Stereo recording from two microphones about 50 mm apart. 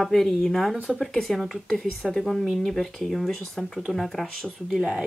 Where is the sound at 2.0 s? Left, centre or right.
Centre.